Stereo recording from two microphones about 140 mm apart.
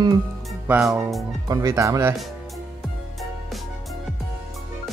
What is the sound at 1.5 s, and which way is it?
Speech, 25° right (ahead or behind).